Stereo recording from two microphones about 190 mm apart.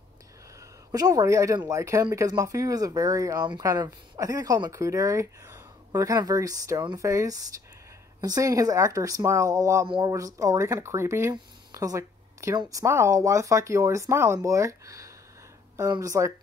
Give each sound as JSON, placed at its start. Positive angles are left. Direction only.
{"t": 0.9, "sound": "speech", "side_deg": -20}